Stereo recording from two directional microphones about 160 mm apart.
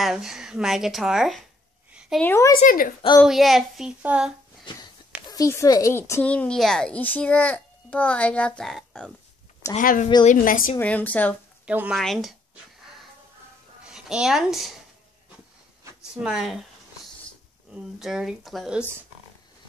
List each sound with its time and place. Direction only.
0.0 s speech: 5° right (ahead or behind)
1.9 s a sound: 5° right (ahead or behind)
2.1 s a woman's voice: 15° left (ahead or behind)
2.6 s a woman's voice: 60° left (ahead or behind)
3.3 s speech: centre (ahead or behind)
5.3 s a woman's voice: 20° left (ahead or behind); by 9.1 s 5° left (ahead or behind)
9.8 s a woman's voice: 55° left (ahead or behind)
10.8 s a woman's voice: 10° left (ahead or behind)
11.6 s speech: 10° right (ahead or behind)
13.8 s a woman's voice: 5° right (ahead or behind)
16.2 s speech: centre (ahead or behind)
17.7 s speech: 5° right (ahead or behind)